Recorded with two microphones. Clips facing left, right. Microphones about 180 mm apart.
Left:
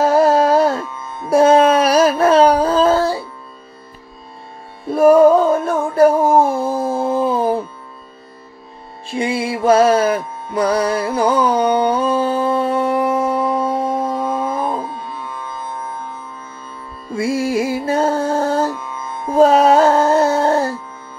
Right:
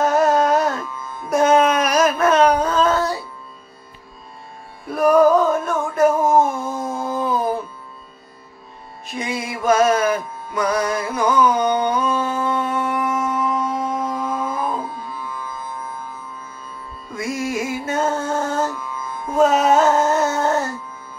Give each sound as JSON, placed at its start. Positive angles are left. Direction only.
{"t": 0.0, "sound": "music", "side_deg": 30}
{"t": 4.8, "sound": "music", "side_deg": 25}
{"t": 9.0, "sound": "music", "side_deg": 30}
{"t": 15.2, "sound": "music", "side_deg": 65}
{"t": 17.1, "sound": "music", "side_deg": 30}